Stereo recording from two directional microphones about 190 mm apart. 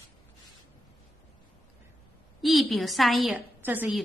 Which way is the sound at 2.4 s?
Centre (ahead or behind).